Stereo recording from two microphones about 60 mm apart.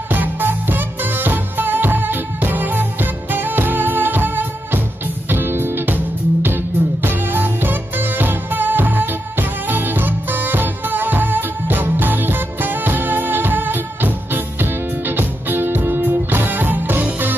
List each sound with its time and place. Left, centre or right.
0.1 s music: right